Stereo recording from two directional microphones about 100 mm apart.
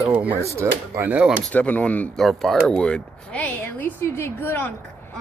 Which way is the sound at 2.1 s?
Centre (ahead or behind).